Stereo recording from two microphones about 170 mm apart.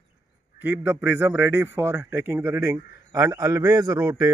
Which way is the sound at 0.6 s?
10° right (ahead or behind).